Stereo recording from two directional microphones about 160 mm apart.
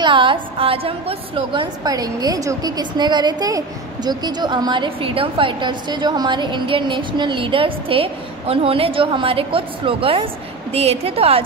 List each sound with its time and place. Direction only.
0.0 s a woman's voice: 30° right (ahead or behind)